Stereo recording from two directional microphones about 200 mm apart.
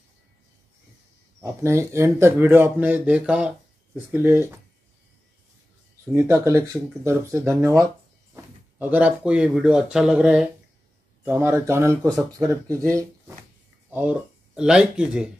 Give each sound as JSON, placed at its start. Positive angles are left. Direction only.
{"t": 1.4, "sound": "speech", "side_deg": -15}
{"t": 6.1, "sound": "speech", "side_deg": -15}